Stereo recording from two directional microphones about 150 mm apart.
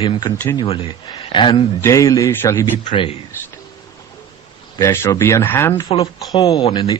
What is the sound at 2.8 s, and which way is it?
Speech, 35° left (ahead or behind).